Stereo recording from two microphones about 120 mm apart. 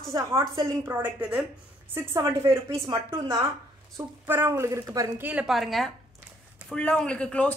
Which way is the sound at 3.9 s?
20° right (ahead or behind).